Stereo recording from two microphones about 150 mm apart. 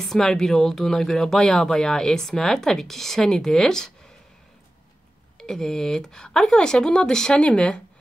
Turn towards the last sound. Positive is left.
turn(degrees=5)  # may be behind; listen again after turning